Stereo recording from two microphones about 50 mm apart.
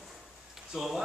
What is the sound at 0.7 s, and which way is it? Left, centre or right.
Speech, centre.